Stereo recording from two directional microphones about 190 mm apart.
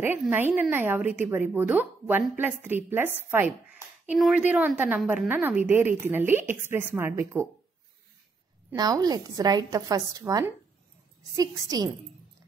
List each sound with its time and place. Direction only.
0.0 s a woman's voice: 10° right (ahead or behind)
8.7 s a woman's voice: 20° right (ahead or behind)